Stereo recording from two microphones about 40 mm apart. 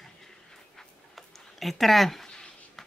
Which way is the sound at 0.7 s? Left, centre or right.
Centre.